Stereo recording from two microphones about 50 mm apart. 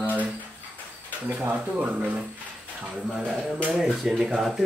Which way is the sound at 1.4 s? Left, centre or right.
Right.